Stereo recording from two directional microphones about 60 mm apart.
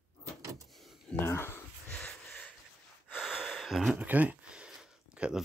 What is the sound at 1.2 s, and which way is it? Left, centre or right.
Dog, left.